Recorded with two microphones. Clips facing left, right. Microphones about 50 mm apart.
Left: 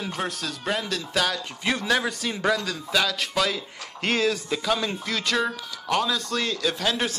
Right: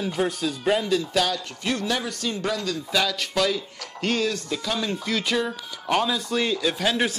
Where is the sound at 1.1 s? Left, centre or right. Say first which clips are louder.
Left 3 dB; centre.